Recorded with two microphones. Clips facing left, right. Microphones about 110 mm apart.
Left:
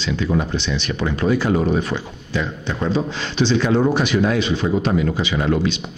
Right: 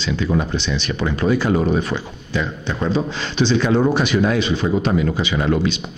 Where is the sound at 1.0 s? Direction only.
25° right (ahead or behind).